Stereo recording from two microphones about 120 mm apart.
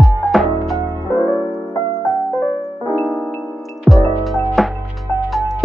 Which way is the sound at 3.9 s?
5° right (ahead or behind).